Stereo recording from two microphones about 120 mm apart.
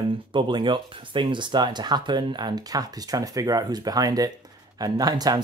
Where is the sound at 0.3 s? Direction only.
40° right (ahead or behind).